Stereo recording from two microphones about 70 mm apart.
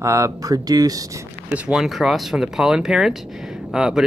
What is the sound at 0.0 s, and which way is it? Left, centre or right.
Speech, right.